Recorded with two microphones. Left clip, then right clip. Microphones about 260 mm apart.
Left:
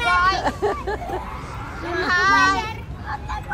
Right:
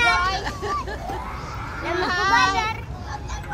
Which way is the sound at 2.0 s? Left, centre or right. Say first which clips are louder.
Left 3 dB; right.